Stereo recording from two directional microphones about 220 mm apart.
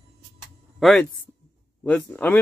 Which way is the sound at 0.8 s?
Centre (ahead or behind).